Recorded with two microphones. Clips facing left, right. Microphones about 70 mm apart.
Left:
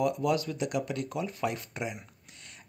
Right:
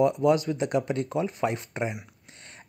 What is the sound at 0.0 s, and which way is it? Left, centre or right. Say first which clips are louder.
Speech: right 6 dB; right.